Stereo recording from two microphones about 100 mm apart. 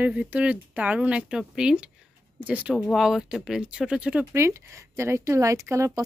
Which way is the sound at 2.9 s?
Centre (ahead or behind).